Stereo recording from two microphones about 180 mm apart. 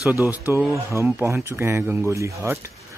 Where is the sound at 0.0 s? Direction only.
10° right (ahead or behind).